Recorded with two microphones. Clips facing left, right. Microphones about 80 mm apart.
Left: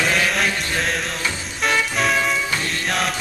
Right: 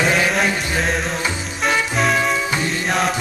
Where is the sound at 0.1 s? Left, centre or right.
Centre.